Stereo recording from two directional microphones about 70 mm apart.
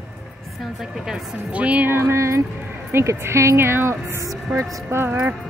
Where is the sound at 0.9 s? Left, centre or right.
Centre.